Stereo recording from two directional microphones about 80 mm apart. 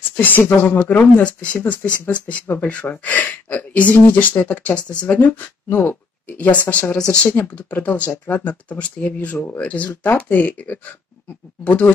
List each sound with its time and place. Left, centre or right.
0.1 s speech: left